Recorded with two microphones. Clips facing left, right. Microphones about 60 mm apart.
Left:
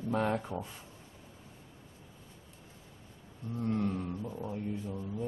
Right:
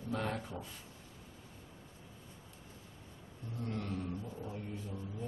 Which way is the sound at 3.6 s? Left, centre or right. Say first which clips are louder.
Left 7 dB; left.